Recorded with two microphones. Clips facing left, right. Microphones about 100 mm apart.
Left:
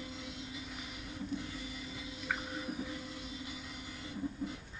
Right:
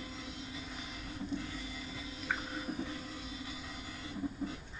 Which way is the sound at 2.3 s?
5° left (ahead or behind).